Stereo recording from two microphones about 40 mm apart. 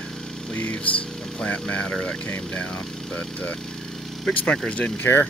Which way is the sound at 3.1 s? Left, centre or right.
Left.